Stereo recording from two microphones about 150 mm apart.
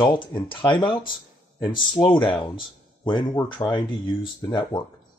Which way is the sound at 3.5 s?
35° left (ahead or behind).